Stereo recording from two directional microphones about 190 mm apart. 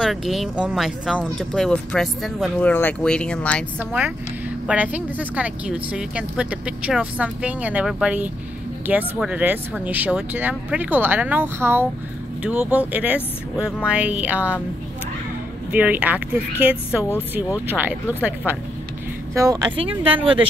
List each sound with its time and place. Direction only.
0.0 s speech: centre (ahead or behind)
4.6 s speech: 5° right (ahead or behind)
15.7 s speech: 10° right (ahead or behind); by 20.4 s 30° right (ahead or behind)